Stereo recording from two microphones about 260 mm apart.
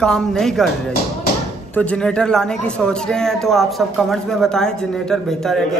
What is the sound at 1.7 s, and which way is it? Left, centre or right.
Speech, centre.